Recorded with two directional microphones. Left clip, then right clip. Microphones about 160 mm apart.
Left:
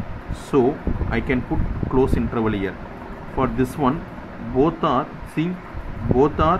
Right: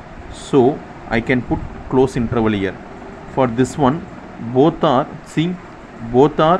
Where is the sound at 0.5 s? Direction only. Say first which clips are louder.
Right 5 dB; 35° right (ahead or behind).